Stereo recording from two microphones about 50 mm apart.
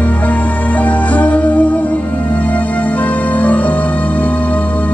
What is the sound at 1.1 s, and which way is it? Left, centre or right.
Music, left.